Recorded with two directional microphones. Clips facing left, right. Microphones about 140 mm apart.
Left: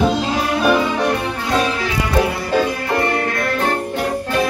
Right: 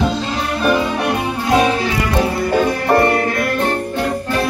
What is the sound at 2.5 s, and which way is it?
Music, 55° right (ahead or behind).